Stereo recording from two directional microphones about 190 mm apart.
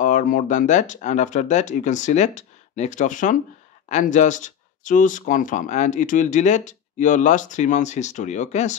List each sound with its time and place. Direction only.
0.0 s speech: 45° left (ahead or behind)